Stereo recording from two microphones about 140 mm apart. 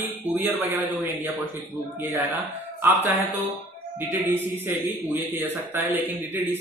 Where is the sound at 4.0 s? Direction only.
15° right (ahead or behind).